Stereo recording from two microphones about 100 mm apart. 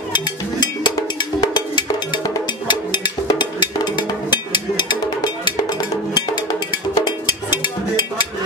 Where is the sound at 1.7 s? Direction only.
50° left (ahead or behind).